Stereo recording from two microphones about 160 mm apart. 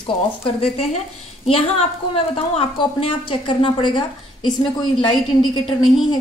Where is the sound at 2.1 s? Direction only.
35° left (ahead or behind).